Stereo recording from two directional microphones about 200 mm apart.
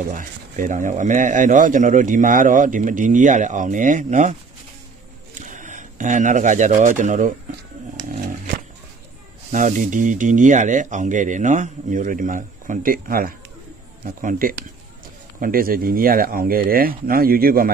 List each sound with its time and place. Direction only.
0.1 s a man's voice: 40° right (ahead or behind)
8.1 s a sound: 40° right (ahead or behind)
9.5 s a man's voice: 40° right (ahead or behind)